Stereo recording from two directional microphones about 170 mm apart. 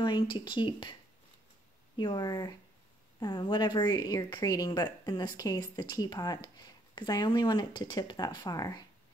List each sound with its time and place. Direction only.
0.0 s speech: 30° left (ahead or behind)
2.0 s speech: 25° left (ahead or behind)